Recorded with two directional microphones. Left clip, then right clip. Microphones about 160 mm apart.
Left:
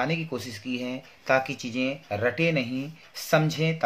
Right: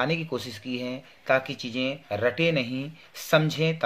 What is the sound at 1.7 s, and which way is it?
Speech, 15° right (ahead or behind).